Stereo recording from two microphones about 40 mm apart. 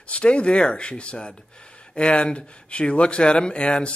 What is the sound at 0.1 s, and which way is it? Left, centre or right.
Speech, left.